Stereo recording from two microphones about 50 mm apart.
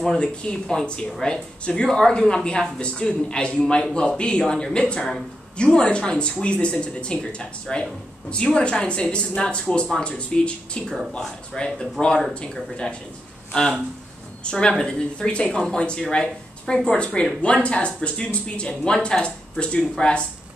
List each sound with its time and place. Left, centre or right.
0.0 s a woman's voice: centre
11.1 s a woman's voice: centre
18.7 s a woman's voice: centre
19.0 s speech: centre